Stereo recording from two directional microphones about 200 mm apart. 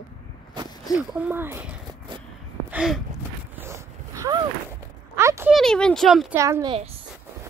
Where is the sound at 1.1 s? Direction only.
10° right (ahead or behind).